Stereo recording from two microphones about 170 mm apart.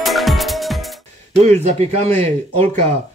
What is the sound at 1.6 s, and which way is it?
A man's voice, 35° right (ahead or behind).